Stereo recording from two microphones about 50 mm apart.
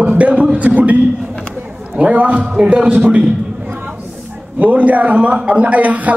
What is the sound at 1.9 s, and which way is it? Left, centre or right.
A man's voice, right.